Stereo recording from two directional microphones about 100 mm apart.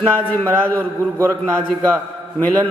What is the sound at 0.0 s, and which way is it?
Speech, 15° left (ahead or behind).